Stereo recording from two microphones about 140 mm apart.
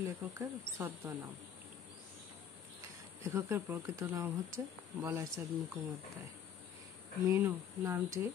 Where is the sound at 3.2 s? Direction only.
20° right (ahead or behind).